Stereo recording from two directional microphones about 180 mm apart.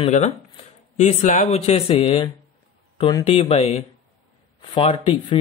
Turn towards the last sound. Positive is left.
turn(degrees=30)  # may be behind; listen again after turning